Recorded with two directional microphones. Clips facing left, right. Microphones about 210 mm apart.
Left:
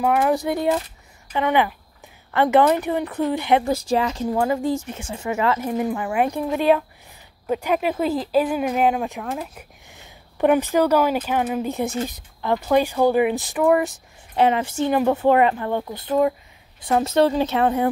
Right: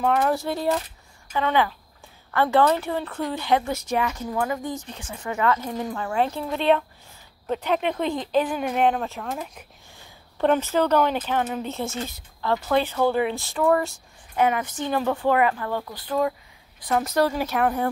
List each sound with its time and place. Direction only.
0.0 s a woman's voice: 10° left (ahead or behind)
3.6 s speech: 30° left (ahead or behind)
4.8 s speech: 15° left (ahead or behind)
14.3 s a woman's voice: 30° left (ahead or behind)